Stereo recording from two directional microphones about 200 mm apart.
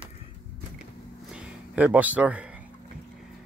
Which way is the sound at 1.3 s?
5° right (ahead or behind).